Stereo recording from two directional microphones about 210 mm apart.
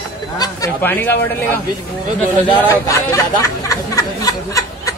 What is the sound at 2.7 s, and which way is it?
Speech, 15° left (ahead or behind).